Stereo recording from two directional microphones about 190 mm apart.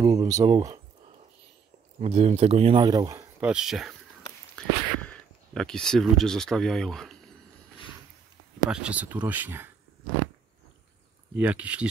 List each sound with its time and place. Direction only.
0.0 s speech: 30° right (ahead or behind)
0.3 s speech: 20° right (ahead or behind)
2.0 s speech: 35° right (ahead or behind)
3.3 s speech: 5° right (ahead or behind)
8.6 s speech: 5° right (ahead or behind)
11.3 s speech: 5° right (ahead or behind)